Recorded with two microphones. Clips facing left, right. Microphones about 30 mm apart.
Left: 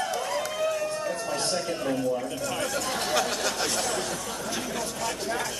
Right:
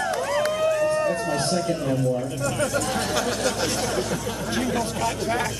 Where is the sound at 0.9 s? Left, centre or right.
Right.